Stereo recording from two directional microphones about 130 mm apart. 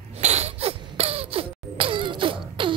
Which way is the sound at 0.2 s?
55° right (ahead or behind).